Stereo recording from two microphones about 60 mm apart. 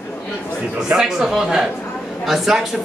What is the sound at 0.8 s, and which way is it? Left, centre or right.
Speech, centre.